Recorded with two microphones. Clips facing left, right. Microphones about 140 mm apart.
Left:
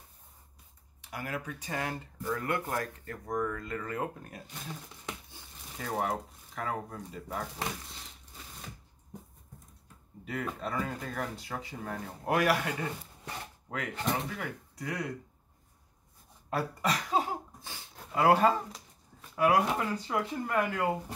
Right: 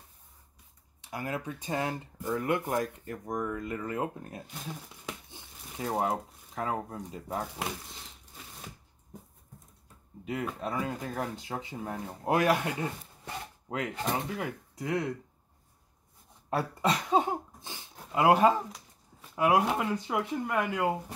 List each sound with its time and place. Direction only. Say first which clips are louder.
1.1 s speech: right 3 dB; 25° right (ahead or behind)
10.2 s speech: right 2 dB; 15° right (ahead or behind)
13.7 s speech: right 1 dB; 25° right (ahead or behind)
16.4 s a sound: right 3 dB; 25° right (ahead or behind)
18.1 s speech: right 2 dB; 15° right (ahead or behind)